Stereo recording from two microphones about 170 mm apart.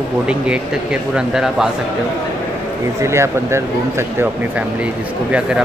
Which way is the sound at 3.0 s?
15° right (ahead or behind).